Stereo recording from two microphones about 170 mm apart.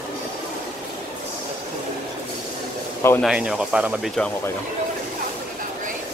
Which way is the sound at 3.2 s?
5° right (ahead or behind).